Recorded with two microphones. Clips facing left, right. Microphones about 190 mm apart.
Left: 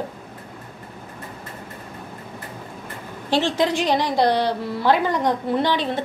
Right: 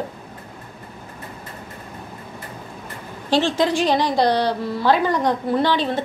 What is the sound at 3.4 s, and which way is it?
A woman's voice, 20° left (ahead or behind).